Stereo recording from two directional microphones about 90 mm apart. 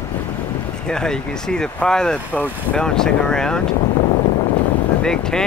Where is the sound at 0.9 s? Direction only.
10° left (ahead or behind).